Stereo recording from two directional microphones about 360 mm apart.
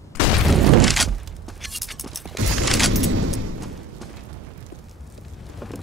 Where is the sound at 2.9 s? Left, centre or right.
Right.